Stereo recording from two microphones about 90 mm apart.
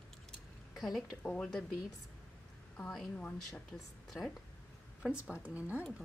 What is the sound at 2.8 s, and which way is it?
A woman's voice, 5° left (ahead or behind).